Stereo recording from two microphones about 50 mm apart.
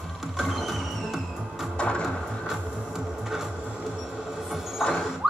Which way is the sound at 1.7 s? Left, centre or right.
Centre.